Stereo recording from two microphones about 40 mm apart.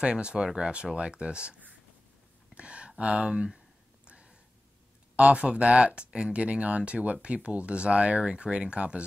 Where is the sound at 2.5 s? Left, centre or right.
Right.